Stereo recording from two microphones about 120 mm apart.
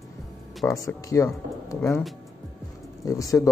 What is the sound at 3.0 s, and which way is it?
Speech, 30° left (ahead or behind).